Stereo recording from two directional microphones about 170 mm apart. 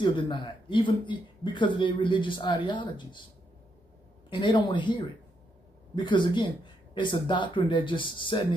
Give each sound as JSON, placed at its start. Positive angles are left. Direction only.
{"t": 0.0, "sound": "speech", "side_deg": 30}
{"t": 4.3, "sound": "speech", "side_deg": 25}